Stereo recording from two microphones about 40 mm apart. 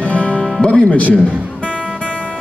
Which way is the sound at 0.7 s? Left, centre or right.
Left.